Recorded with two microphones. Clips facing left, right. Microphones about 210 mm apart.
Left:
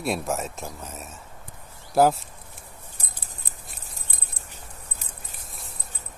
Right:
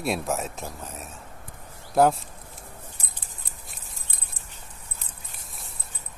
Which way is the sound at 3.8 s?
40° left (ahead or behind).